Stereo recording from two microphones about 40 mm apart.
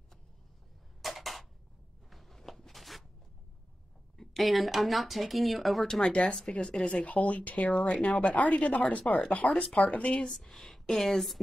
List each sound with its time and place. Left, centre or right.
1.0 s a sound: centre
4.4 s speech: centre
6.0 s speech: left
7.1 s speech: left
10.4 s speech: centre